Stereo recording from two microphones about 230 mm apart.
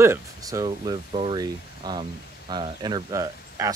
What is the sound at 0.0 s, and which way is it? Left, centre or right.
Speech, centre.